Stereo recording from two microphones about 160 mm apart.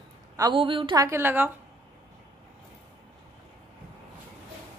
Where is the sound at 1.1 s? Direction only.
15° right (ahead or behind).